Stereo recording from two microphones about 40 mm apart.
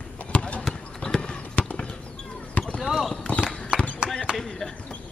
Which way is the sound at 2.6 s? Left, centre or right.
Left.